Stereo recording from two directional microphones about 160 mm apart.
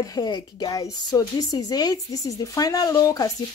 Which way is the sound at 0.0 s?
25° left (ahead or behind).